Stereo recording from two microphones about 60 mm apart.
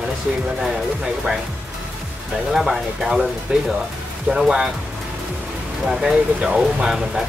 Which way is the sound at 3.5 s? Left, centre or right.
Centre.